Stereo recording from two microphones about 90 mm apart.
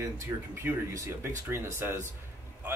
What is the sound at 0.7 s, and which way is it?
Speech, 20° right (ahead or behind).